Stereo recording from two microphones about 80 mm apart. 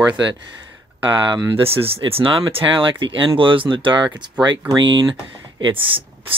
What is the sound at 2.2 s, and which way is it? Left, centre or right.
Speech, right.